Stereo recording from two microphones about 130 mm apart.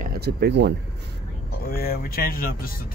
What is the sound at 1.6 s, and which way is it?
Speech, 90° left.